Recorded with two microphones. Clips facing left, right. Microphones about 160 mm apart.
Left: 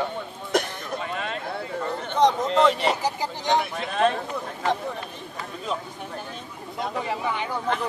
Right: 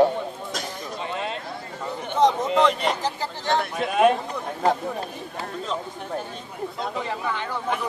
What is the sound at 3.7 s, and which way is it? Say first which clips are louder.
Speech: right 4 dB; 5° right (ahead or behind).